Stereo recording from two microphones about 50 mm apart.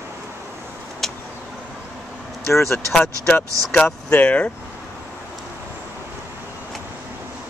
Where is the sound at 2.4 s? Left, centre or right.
Left.